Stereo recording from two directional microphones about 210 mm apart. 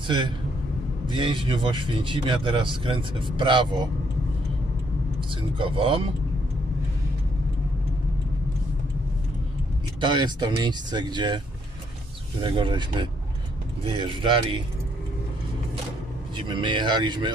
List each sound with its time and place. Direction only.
0.0 s a man's voice: 25° right (ahead or behind)
5.6 s speech: 25° right (ahead or behind)
9.9 s speech: 20° right (ahead or behind)
16.3 s speech: 20° right (ahead or behind)